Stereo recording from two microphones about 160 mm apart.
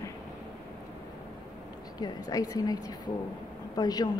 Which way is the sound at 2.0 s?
25° left (ahead or behind).